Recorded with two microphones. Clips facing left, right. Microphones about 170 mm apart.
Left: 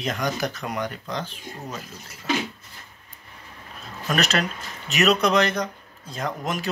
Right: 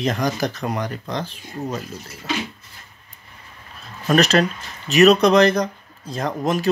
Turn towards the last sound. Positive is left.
turn(degrees=-35)  # may be behind; listen again after turning